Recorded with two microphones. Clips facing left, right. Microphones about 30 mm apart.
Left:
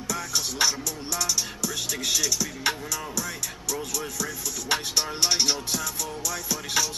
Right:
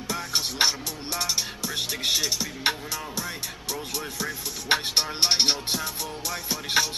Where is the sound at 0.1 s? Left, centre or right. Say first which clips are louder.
Right 1 dB; right.